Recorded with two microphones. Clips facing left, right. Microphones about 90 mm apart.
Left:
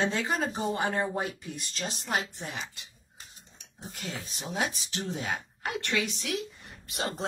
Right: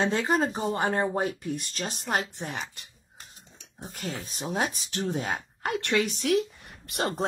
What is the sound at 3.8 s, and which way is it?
Speech, 40° right (ahead or behind).